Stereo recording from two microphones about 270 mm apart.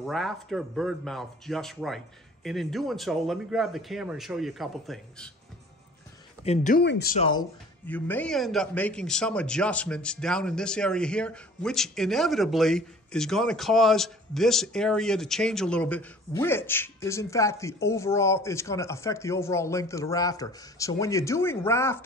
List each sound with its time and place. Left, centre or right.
0.0 s speech: centre
6.4 s speech: left
7.2 s speech: centre
7.8 s speech: centre